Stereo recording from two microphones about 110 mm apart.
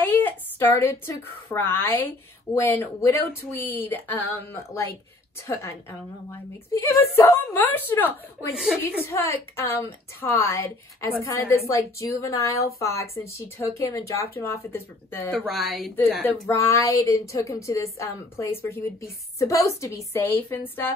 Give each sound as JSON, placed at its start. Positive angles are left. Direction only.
{"t": 0.0, "sound": "a woman's voice", "side_deg": 15}
{"t": 15.5, "sound": "speech", "side_deg": 0}
{"t": 16.0, "sound": "a woman's voice", "side_deg": 20}